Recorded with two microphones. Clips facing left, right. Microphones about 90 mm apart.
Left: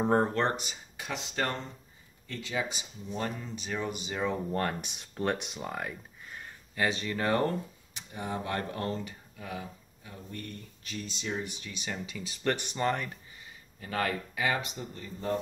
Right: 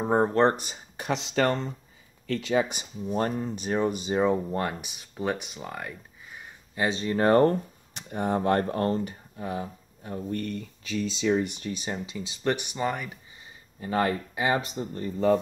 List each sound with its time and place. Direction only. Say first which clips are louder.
0.0 s speech: right 2 dB; 15° right (ahead or behind)
0.3 s speech: right 7 dB; 35° right (ahead or behind)
1.1 s speech: right 8 dB; 80° right
2.5 s speech: right 8 dB; 55° right (ahead or behind); by 4.3 s 35° right (ahead or behind)
4.3 s speech: right 4 dB; 15° right (ahead or behind)
6.7 s speech: right 4 dB; 25° right (ahead or behind)
7.9 s speech: right 9 dB; 50° right (ahead or behind)
10.0 s speech: right 12 dB; 50° right (ahead or behind)
10.4 s speech: right 10 dB; 80° right
11.6 s speech: right 8 dB; 40° right (ahead or behind)
11.9 s speech: right 4 dB; 25° right (ahead or behind); by 13.2 s 10° right (ahead or behind)
13.7 s speech: right 6 dB; 25° right (ahead or behind)